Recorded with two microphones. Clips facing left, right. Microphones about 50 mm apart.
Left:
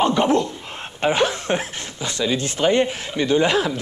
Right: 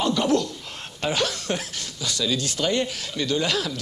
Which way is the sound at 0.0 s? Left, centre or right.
Left.